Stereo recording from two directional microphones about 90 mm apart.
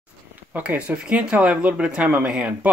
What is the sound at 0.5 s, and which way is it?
Speech, 15° right (ahead or behind).